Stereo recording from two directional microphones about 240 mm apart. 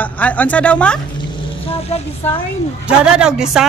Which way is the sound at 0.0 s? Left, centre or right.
Centre.